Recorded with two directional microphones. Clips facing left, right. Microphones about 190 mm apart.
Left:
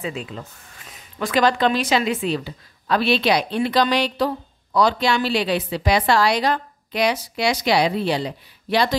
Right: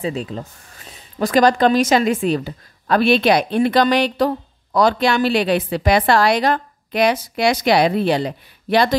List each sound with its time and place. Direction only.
0.0 s speech: 35° right (ahead or behind); by 8.9 s 55° right (ahead or behind)